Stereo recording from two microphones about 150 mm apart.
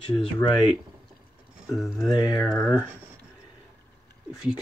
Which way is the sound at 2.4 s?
20° left (ahead or behind).